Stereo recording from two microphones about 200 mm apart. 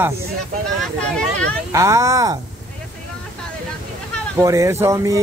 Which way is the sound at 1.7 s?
15° right (ahead or behind).